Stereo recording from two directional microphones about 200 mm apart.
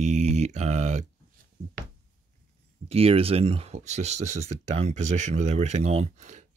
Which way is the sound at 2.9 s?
30° right (ahead or behind).